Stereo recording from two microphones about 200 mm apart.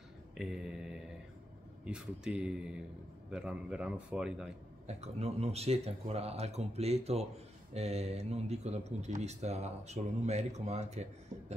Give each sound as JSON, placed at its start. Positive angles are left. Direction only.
{"t": 0.4, "sound": "mantra", "side_deg": 0}
{"t": 1.9, "sound": "a man's voice", "side_deg": -5}
{"t": 4.8, "sound": "speech", "side_deg": -30}